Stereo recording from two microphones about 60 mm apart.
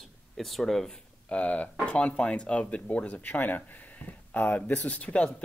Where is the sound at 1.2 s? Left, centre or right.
Left.